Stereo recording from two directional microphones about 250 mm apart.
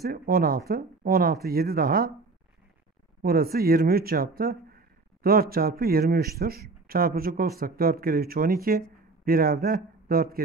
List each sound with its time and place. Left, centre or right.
0.0 s speech: right
3.2 s a man's voice: right